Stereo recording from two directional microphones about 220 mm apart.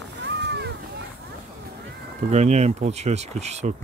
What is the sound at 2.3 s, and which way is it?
Speech, 30° right (ahead or behind).